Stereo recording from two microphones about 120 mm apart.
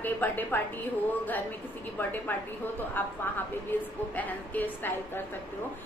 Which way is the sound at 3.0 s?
15° left (ahead or behind).